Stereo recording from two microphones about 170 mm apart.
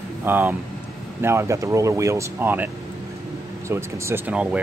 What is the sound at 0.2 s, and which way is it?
Speech, 10° right (ahead or behind).